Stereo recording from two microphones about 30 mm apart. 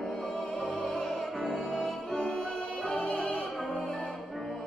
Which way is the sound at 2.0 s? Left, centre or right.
Centre.